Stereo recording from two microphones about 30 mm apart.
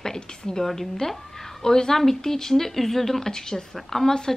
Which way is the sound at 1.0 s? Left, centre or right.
Centre.